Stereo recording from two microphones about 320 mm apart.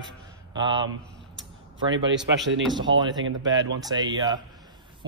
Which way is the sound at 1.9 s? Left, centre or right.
Right.